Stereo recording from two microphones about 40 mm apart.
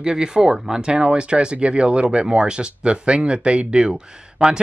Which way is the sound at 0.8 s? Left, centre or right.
Right.